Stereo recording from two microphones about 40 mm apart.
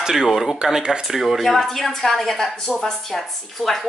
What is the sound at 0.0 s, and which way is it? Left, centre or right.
Speech, centre.